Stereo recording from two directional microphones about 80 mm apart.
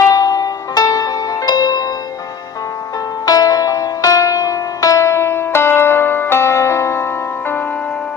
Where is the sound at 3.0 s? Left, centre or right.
Left; by 8.0 s centre.